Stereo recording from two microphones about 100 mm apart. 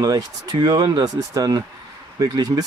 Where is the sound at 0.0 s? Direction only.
40° right (ahead or behind).